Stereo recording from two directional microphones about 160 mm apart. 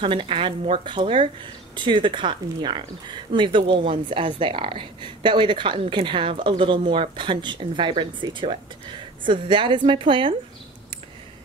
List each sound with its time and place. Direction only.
0.0 s speech: 35° right (ahead or behind)